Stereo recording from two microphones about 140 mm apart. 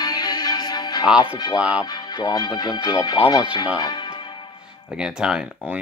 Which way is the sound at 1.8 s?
30° left (ahead or behind).